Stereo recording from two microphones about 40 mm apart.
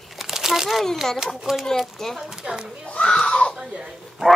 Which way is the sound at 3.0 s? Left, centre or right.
Left.